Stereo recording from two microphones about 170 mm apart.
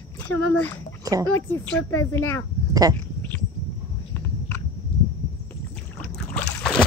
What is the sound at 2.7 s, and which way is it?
Speech, 20° right (ahead or behind).